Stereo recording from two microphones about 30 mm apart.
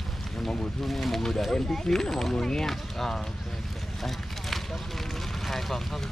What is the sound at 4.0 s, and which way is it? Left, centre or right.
Clip-clop, centre.